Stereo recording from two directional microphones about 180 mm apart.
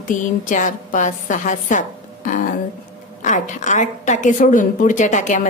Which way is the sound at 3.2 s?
45° left (ahead or behind).